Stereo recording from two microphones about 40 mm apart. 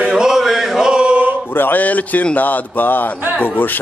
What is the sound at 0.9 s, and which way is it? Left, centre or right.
Male singing, right.